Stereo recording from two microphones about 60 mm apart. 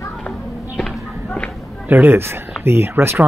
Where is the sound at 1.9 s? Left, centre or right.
Right.